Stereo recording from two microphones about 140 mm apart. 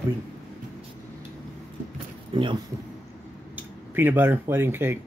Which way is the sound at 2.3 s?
40° right (ahead or behind).